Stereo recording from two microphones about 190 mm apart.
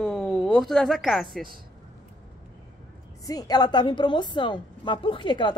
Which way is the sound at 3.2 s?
20° left (ahead or behind).